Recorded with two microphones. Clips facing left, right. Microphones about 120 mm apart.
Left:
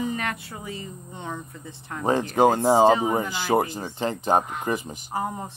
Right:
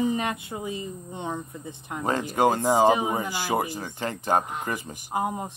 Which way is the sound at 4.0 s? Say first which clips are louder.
Left 3 dB; 20° left (ahead or behind).